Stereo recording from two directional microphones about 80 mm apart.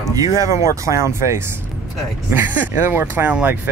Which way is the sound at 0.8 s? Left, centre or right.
Right.